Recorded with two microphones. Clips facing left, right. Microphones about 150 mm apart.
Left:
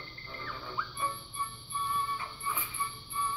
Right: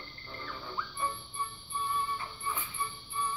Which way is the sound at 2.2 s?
Centre (ahead or behind).